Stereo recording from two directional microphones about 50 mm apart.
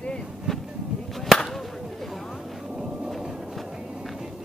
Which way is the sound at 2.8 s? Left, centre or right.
Centre.